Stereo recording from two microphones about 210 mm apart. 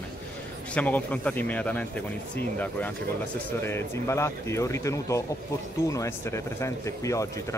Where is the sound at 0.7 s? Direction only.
5° left (ahead or behind).